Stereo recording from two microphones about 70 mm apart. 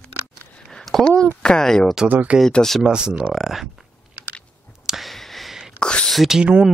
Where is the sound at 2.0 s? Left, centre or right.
Right.